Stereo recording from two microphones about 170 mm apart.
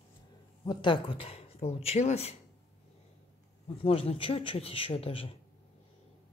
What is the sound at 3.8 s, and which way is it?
Speech, 35° left (ahead or behind).